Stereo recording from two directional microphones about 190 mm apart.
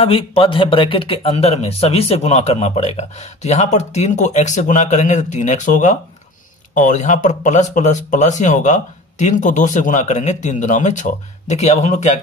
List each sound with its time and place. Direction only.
0.0 s speech: 30° left (ahead or behind)